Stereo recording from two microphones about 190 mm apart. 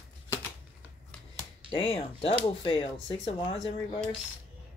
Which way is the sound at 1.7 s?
30° left (ahead or behind).